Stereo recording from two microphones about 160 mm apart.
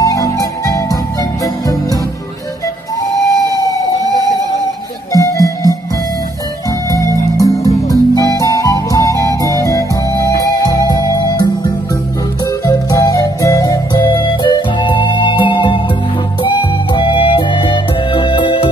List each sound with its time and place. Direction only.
0.0 s music: 20° left (ahead or behind)
3.2 s emergency vehicle: 20° left (ahead or behind)
4.0 s a sound: 20° left (ahead or behind)
5.1 s music: 20° left (ahead or behind)
6.9 s music: 20° left (ahead or behind)
12.6 s music: 20° left (ahead or behind)